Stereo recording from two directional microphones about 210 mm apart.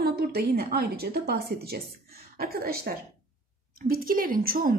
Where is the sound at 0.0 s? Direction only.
45° right (ahead or behind).